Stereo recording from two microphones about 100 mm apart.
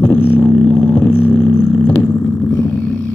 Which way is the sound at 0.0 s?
20° left (ahead or behind).